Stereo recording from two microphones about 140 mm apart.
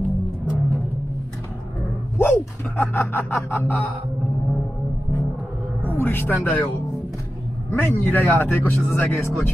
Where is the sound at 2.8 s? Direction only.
15° left (ahead or behind).